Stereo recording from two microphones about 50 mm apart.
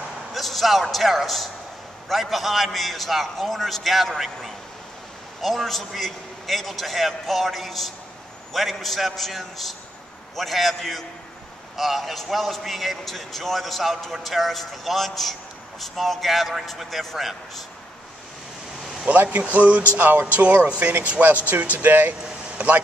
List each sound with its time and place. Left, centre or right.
0.3 s a man's voice: centre
5.4 s a man's voice: centre
19.3 s speech: right
20.3 s speech: right